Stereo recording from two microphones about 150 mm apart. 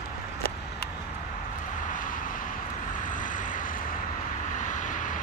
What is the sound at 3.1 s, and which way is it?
Vehicle, 60° left (ahead or behind).